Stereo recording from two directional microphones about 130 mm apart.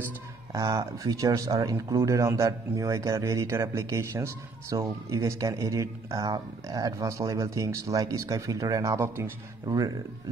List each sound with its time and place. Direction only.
0.5 s speech: 25° right (ahead or behind)